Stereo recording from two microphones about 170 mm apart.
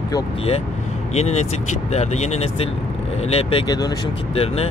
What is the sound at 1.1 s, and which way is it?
Speech, 40° left (ahead or behind).